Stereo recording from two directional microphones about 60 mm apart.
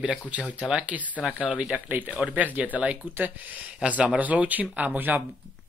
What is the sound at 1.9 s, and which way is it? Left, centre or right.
Speech, right.